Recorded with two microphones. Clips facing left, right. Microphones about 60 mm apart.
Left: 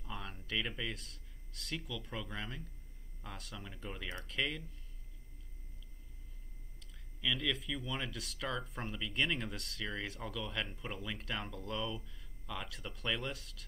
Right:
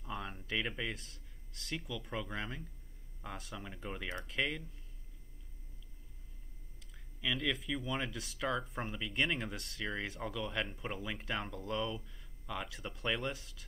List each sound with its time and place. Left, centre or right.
0.0 s speech: centre
7.2 s speech: centre